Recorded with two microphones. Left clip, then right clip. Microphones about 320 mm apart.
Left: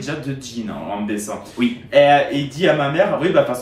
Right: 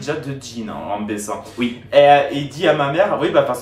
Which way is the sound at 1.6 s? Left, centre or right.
Centre.